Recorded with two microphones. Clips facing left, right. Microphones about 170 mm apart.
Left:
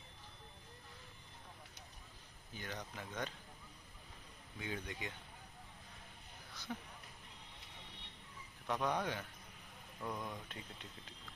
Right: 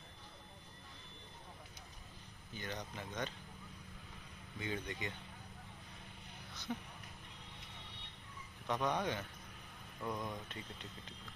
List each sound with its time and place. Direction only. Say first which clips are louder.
2.5 s speech: right 2 dB; 5° left (ahead or behind)
4.6 s speech: right 2 dB; centre (ahead or behind)
6.7 s speech: right 3 dB; 5° right (ahead or behind)
8.6 s speech: right 1 dB; 5° left (ahead or behind)
10.0 s speech: right 2 dB; 10° right (ahead or behind)